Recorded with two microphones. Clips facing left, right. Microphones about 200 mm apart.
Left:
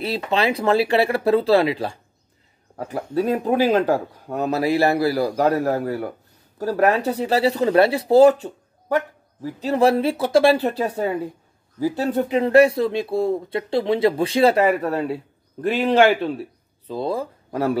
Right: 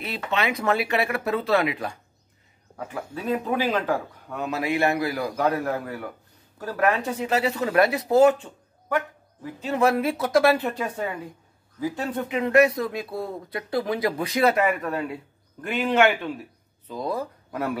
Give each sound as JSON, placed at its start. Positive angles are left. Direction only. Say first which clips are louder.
{"t": 0.0, "sound": "speech", "louder": "left 5 dB", "side_deg": 35}